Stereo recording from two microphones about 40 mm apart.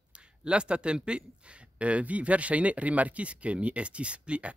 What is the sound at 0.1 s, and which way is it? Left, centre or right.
Speech, right.